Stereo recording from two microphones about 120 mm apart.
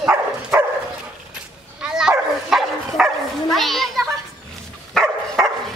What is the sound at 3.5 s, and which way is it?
Children playing, centre (ahead or behind).